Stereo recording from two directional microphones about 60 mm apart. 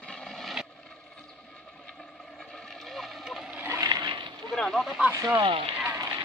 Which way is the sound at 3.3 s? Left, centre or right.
Centre.